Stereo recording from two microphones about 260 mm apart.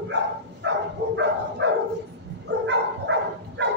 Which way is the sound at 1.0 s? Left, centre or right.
Right.